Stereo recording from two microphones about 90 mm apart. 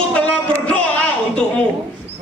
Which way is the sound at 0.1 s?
15° left (ahead or behind).